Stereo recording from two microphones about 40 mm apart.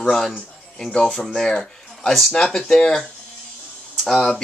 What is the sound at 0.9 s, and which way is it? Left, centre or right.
Speech, centre.